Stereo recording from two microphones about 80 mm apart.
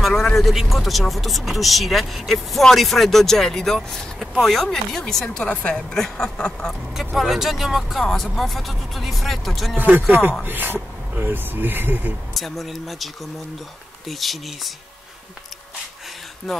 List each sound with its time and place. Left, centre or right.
0.0 s speech: centre
7.2 s speech: centre
9.8 s speech: right
12.4 s speech: centre
16.5 s speech: centre